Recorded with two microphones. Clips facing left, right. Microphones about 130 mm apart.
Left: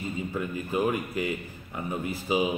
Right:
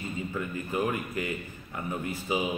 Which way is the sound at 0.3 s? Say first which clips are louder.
Left 2 dB; 10° left (ahead or behind).